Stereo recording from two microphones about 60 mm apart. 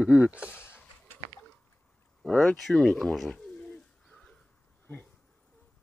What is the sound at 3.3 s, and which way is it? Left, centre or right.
Bird, centre.